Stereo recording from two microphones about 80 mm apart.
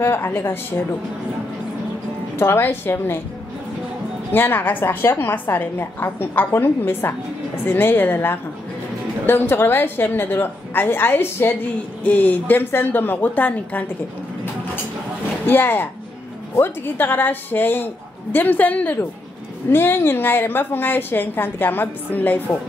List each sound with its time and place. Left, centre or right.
0.0 s a woman's voice: left
2.3 s a woman's voice: left
4.3 s a woman's voice: left
15.4 s a woman's voice: left